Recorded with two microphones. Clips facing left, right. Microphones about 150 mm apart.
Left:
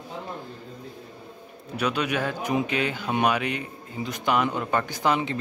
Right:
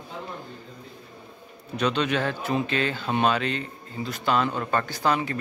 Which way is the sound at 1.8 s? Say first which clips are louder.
Right 1 dB; 10° left (ahead or behind).